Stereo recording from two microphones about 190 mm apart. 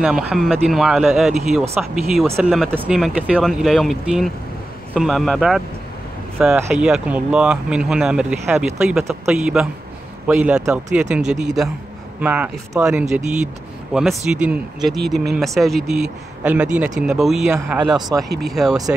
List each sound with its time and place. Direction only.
0.0 s speech: centre (ahead or behind)